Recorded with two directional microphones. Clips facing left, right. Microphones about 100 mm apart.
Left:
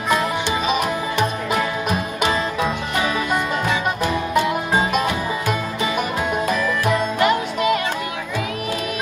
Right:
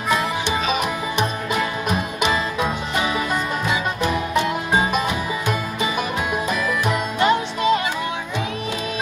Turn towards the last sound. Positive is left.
turn(degrees=-25)  # may be behind; listen again after turning